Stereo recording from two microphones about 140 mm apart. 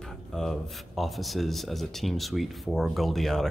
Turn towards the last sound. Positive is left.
turn(degrees=0)  # may be behind; listen again after turning